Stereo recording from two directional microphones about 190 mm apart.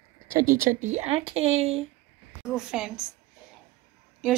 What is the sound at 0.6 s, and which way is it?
A woman's voice, 40° right (ahead or behind).